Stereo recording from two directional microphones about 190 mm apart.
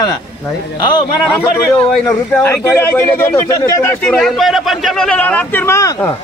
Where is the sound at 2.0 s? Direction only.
15° left (ahead or behind).